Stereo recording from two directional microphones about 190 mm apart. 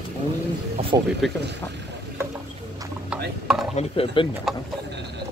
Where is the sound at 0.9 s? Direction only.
20° right (ahead or behind).